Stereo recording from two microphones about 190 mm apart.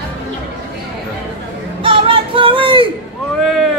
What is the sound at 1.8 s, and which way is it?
Music, 25° right (ahead or behind).